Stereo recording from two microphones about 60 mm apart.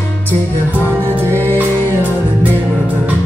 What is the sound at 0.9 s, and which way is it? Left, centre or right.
Music, left.